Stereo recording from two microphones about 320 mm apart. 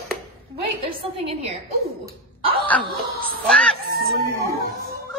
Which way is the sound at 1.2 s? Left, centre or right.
Centre.